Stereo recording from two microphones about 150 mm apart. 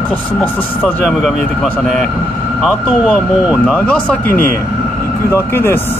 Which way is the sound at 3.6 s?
10° left (ahead or behind).